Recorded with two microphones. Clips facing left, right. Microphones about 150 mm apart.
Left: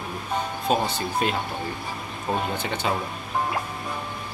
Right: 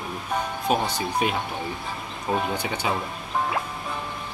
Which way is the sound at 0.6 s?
10° right (ahead or behind).